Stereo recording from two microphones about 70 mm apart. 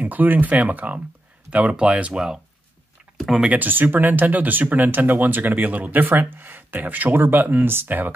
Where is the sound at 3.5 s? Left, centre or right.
Right.